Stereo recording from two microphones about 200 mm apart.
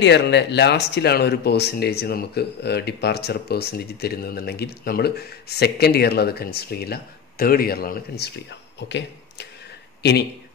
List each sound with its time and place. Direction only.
0.0 s speech: 60° left (ahead or behind)